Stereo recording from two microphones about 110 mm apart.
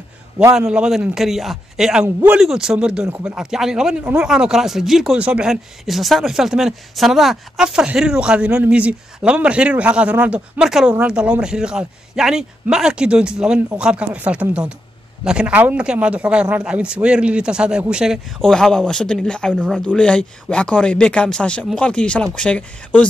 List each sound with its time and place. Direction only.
0.6 s a man's voice: 5° right (ahead or behind)
2.0 s speech: 20° right (ahead or behind)
2.3 s a man's voice: 5° right (ahead or behind); by 23.0 s 15° left (ahead or behind)